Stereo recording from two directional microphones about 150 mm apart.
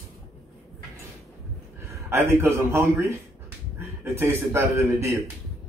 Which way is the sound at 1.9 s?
20° right (ahead or behind).